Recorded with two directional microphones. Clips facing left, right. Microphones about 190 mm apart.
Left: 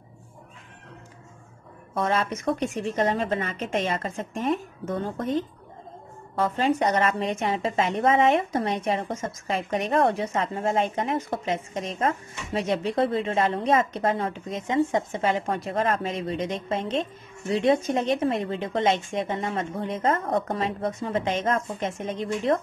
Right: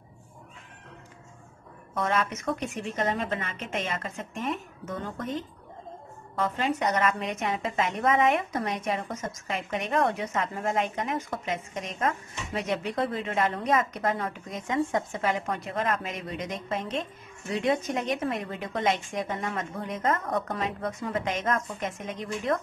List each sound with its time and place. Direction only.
2.0 s a woman's voice: 30° left (ahead or behind)
6.3 s a woman's voice: 30° left (ahead or behind)